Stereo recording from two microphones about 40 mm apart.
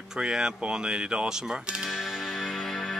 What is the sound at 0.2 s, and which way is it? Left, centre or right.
Speech, right.